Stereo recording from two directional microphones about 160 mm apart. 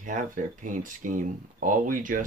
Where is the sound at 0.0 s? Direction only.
55° right (ahead or behind).